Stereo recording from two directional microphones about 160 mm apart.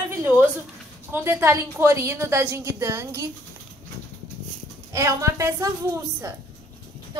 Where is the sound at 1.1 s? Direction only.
15° right (ahead or behind).